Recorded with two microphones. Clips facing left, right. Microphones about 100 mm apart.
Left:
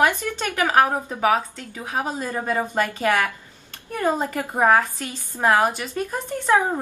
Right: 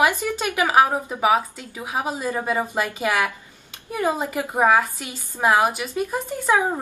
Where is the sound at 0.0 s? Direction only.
10° right (ahead or behind).